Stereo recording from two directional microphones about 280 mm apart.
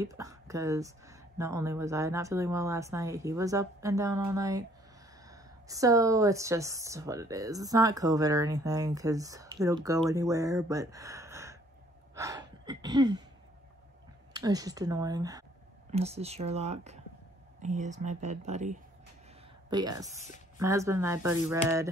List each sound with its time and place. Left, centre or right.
0.0 s speech: centre
14.3 s speech: centre
19.7 s speech: centre